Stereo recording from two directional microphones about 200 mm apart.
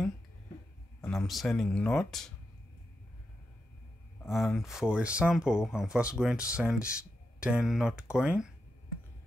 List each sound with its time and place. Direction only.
1.0 s speech: centre (ahead or behind)
4.2 s speech: centre (ahead or behind)